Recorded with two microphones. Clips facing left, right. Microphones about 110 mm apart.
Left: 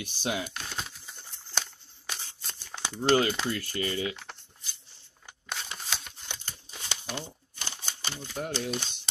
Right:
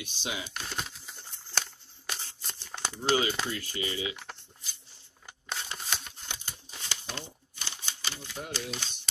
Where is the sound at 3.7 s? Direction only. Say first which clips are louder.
Left 3 dB; 50° left (ahead or behind).